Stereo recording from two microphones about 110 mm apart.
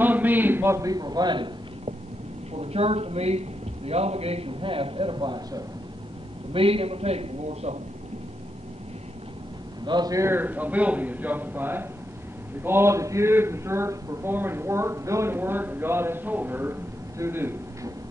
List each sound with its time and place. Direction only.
0.0 s a man's voice: 15° right (ahead or behind); by 1.5 s 45° right (ahead or behind)
2.5 s a man's voice: 65° right (ahead or behind); by 5.6 s 45° right (ahead or behind)
6.5 s a man's voice: 60° right (ahead or behind); by 7.8 s 75° right (ahead or behind)
9.8 s a man's voice: 40° right (ahead or behind)
10.2 s a man's voice: 20° right (ahead or behind)
17.2 s a sound: 20° right (ahead or behind)